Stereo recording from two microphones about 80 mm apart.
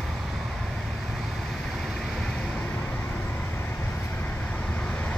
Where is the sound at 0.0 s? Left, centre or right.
Centre.